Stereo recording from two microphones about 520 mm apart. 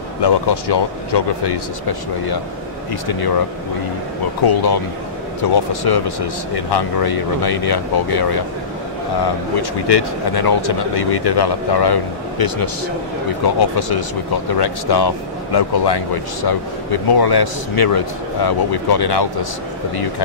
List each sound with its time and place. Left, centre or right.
0.2 s speech: left
4.5 s speech: left
9.6 s speech: left